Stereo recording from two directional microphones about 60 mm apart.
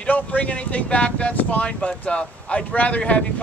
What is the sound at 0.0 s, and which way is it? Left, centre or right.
Speech, left.